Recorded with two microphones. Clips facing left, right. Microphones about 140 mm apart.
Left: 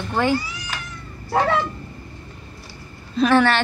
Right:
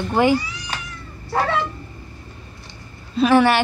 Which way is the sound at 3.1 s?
10° right (ahead or behind).